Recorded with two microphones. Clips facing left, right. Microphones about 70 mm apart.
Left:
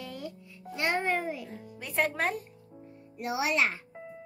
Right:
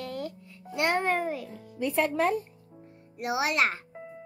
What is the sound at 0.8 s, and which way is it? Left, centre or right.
Speech, right.